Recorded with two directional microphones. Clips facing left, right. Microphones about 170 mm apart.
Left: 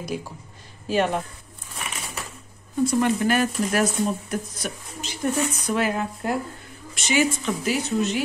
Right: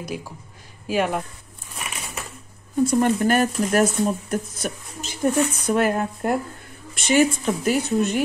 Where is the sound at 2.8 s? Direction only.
50° right (ahead or behind).